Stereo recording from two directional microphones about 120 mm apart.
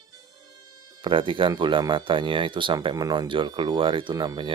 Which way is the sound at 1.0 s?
45° right (ahead or behind).